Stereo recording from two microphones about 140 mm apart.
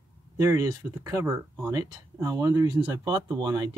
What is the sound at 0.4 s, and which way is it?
Speech, 20° right (ahead or behind).